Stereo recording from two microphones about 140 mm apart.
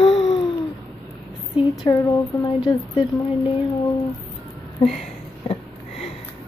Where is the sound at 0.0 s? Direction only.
40° left (ahead or behind).